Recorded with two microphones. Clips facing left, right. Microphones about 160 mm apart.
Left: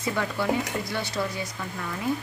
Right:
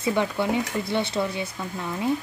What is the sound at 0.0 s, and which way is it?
Speech, 20° right (ahead or behind).